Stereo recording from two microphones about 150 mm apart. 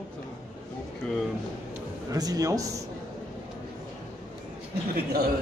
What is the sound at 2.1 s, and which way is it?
Speech, 25° right (ahead or behind).